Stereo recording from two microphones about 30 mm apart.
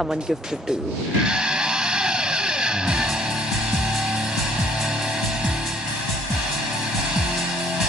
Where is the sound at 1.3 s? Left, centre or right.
Right.